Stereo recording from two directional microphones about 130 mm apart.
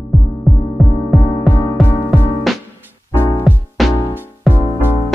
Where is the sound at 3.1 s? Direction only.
30° left (ahead or behind).